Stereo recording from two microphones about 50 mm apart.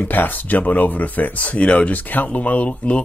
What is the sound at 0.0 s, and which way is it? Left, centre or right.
Speech, left.